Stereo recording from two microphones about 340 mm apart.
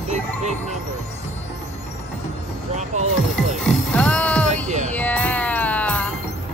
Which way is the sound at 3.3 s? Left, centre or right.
Centre.